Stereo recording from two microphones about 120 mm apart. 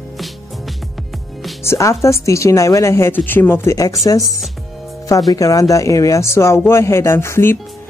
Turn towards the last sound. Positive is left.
turn(degrees=20)  # may be behind; listen again after turning